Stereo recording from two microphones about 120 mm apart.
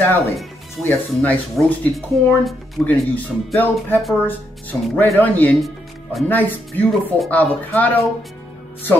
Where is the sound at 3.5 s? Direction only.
15° left (ahead or behind).